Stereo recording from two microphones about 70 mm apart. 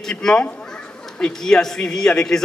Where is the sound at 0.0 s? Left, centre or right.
Centre.